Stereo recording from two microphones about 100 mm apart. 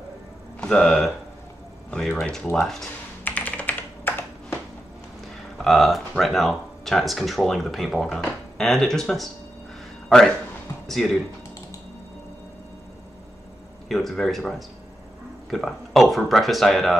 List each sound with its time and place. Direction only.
0.6 s speech: 5° left (ahead or behind)
3.3 s computer keyboard: 15° left (ahead or behind)
5.6 s a man's voice: centre (ahead or behind)
13.8 s speech: 5° left (ahead or behind)